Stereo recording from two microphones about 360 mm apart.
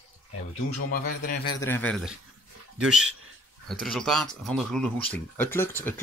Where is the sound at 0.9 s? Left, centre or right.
Left.